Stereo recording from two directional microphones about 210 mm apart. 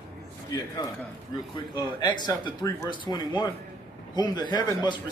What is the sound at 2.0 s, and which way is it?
A man's voice, 20° left (ahead or behind).